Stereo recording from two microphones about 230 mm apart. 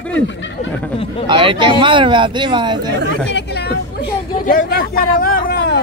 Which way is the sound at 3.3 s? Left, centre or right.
Left.